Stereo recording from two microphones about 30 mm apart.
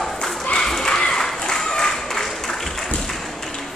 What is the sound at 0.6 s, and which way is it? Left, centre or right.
Applause, centre.